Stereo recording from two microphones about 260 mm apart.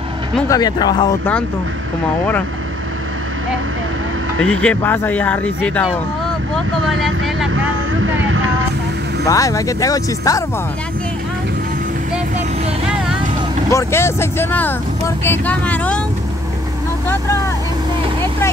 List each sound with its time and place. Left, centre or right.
0.4 s speech: centre
4.4 s a man's voice: centre
7.5 s vehicle: right
9.3 s speech: centre
13.7 s speech: centre